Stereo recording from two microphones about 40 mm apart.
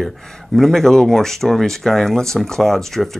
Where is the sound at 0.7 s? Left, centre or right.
Centre.